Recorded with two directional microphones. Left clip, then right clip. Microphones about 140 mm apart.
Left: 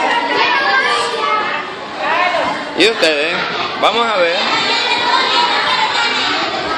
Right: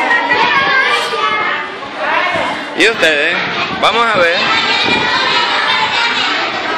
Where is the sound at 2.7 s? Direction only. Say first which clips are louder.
Right 2 dB; 5° left (ahead or behind).